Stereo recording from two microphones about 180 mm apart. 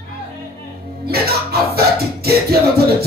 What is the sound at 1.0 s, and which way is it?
Music, 60° right (ahead or behind).